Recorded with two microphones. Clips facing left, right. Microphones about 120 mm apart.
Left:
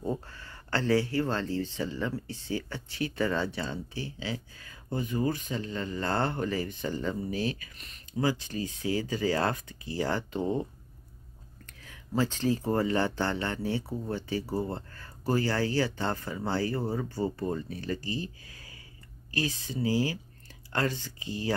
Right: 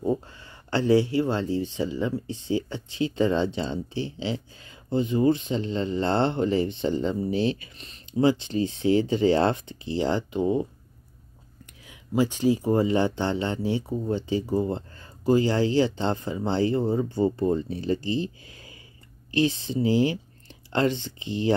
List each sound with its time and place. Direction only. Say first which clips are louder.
0.0 s speech: right 7 dB; 15° right (ahead or behind)